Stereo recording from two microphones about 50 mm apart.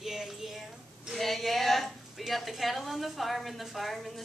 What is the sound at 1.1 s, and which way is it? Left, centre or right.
A woman's voice, centre.